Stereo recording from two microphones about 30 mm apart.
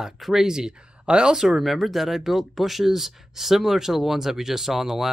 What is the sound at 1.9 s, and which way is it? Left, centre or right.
Speech, centre.